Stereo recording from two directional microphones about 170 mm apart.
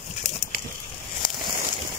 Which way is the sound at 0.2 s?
40° left (ahead or behind).